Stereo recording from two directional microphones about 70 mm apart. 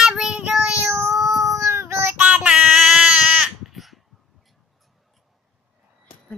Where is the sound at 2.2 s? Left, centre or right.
Right.